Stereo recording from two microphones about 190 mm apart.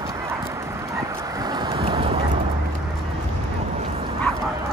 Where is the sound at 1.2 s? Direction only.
20° right (ahead or behind).